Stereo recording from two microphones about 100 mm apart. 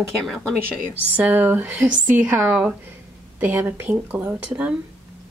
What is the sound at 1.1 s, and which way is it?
Speech, 20° right (ahead or behind).